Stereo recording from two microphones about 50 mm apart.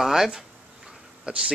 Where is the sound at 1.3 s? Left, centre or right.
Centre.